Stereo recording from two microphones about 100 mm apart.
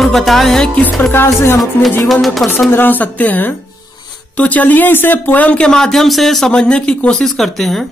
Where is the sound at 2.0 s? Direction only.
Centre (ahead or behind).